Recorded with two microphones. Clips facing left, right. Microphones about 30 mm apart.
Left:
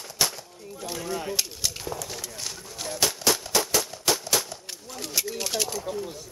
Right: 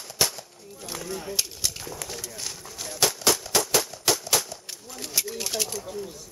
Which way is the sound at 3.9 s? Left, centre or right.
Centre.